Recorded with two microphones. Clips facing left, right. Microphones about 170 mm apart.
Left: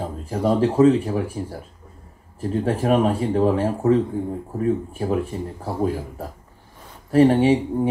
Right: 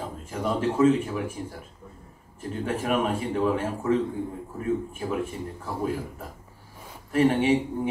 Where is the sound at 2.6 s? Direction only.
35° left (ahead or behind).